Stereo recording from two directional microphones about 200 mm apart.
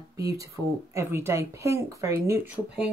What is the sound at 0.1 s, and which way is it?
Speech, 15° right (ahead or behind).